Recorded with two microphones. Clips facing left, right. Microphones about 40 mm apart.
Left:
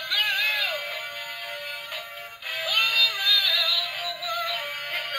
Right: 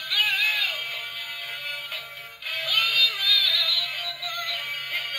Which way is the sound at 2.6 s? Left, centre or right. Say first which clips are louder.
Even; left.